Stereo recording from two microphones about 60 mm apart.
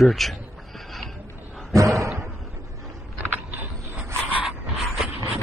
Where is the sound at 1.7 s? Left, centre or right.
Right.